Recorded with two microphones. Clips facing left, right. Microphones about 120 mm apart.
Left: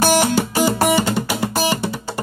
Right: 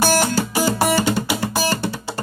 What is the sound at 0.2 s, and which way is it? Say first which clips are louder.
Music: left 2 dB; 15° left (ahead or behind).